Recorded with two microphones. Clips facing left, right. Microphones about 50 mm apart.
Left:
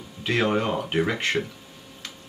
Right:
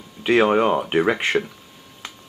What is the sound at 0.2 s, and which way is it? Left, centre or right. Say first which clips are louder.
Speech: right 7 dB; right.